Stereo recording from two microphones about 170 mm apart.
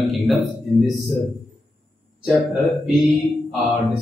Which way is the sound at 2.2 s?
Centre (ahead or behind).